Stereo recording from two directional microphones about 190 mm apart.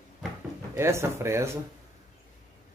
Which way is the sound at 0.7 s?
15° right (ahead or behind).